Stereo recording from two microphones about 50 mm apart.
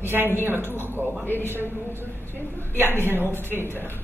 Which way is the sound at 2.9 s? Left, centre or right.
Right.